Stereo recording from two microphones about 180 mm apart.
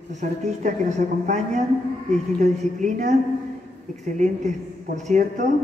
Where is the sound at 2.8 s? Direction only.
45° right (ahead or behind).